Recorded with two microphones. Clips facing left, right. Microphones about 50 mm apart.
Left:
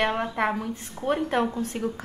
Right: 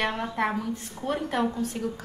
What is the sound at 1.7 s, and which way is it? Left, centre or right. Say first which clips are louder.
Speech: left 2 dB; left.